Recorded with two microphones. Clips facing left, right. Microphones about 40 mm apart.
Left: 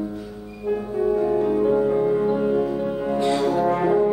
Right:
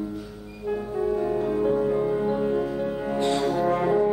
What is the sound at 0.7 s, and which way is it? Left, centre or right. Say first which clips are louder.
Music: left 4 dB; centre.